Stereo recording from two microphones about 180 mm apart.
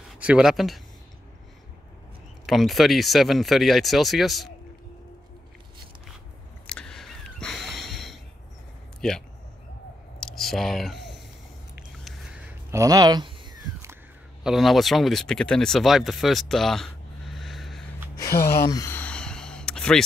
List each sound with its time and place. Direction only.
0.2 s speech: 5° right (ahead or behind)
2.4 s speech: centre (ahead or behind)
6.7 s a sound: 5° left (ahead or behind)
9.0 s speech: 5° left (ahead or behind)
10.2 s a sound: centre (ahead or behind)
12.8 s speech: 20° right (ahead or behind)
14.4 s speech: centre (ahead or behind)
18.1 s gasp: 15° left (ahead or behind)